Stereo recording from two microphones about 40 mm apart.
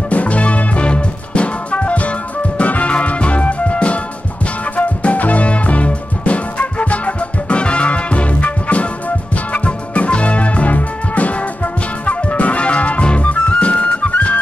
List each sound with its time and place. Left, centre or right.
0.1 s music: left